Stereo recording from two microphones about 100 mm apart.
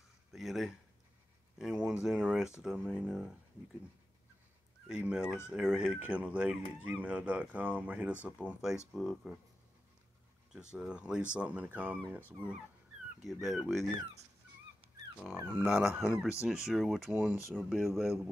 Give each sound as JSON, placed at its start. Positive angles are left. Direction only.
{"t": 0.3, "sound": "speech", "side_deg": 0}
{"t": 4.8, "sound": "speech", "side_deg": -10}
{"t": 10.5, "sound": "speech", "side_deg": -5}
{"t": 15.3, "sound": "speech", "side_deg": -20}
{"t": 15.9, "sound": "speech", "side_deg": -10}
{"t": 17.1, "sound": "speech", "side_deg": -15}
{"t": 17.6, "sound": "speech", "side_deg": 0}